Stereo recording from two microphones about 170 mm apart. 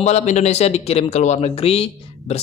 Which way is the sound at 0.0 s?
45° left (ahead or behind).